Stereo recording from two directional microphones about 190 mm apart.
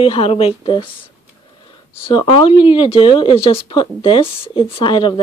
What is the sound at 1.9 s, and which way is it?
Speech, 25° left (ahead or behind).